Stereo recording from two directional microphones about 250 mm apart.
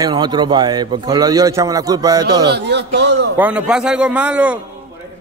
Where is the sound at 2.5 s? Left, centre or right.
Right.